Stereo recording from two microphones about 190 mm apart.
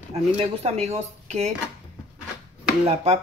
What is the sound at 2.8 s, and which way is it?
Speech, 35° right (ahead or behind).